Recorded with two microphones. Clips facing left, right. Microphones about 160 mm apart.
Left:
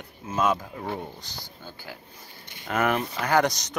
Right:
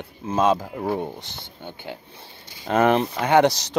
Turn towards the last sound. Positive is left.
turn(degrees=-30)  # may be behind; listen again after turning